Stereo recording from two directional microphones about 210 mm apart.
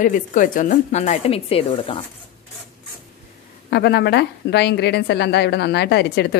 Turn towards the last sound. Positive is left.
turn(degrees=50)  # may be behind; listen again after turning